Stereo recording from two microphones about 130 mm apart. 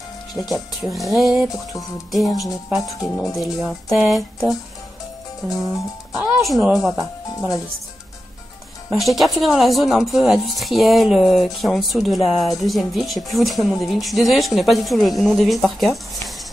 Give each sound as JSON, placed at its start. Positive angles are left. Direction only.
{"t": 0.3, "sound": "a woman's voice", "side_deg": 0}
{"t": 6.1, "sound": "a woman's voice", "side_deg": 0}
{"t": 7.3, "sound": "speech", "side_deg": 25}
{"t": 8.9, "sound": "a woman's voice", "side_deg": 0}